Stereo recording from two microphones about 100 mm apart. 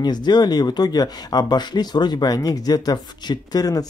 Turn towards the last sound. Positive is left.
turn(degrees=40)  # may be behind; listen again after turning